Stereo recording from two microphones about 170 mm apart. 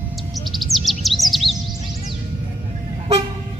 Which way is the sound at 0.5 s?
Centre (ahead or behind).